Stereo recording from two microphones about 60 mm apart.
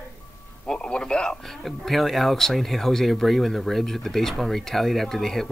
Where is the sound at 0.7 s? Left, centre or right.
Centre.